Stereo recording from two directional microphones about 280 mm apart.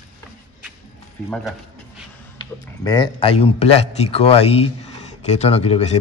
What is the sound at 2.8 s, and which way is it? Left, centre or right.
A man's voice, centre.